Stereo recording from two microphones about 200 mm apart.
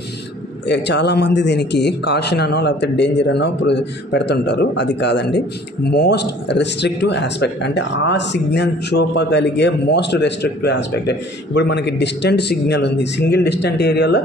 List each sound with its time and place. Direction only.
0.7 s speech: 60° left (ahead or behind)